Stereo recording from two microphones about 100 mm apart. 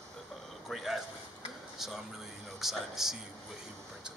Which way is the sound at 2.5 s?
5° right (ahead or behind).